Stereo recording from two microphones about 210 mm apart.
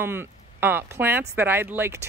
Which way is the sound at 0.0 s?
10° right (ahead or behind).